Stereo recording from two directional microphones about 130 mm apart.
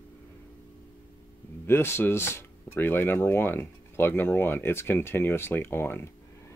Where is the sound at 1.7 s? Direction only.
20° left (ahead or behind).